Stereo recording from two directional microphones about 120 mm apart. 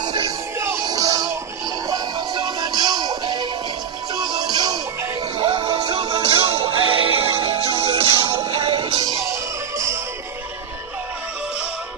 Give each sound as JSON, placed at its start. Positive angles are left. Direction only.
{"t": 0.0, "sound": "music", "side_deg": -40}
{"t": 0.6, "sound": "music", "side_deg": -30}
{"t": 5.4, "sound": "music", "side_deg": -50}